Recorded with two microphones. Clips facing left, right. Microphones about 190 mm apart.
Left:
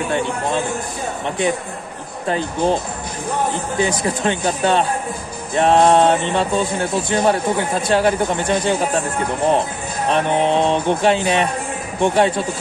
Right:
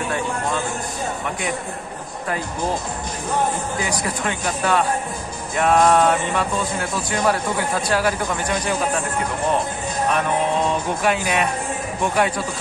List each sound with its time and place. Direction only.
2.2 s speech: 25° left (ahead or behind)
3.8 s speech: 25° left (ahead or behind)
10.0 s speech: 30° left (ahead or behind)